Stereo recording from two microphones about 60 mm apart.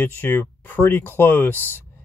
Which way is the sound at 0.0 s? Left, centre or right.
Left.